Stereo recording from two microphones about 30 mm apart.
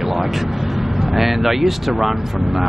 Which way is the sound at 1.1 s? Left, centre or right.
Centre.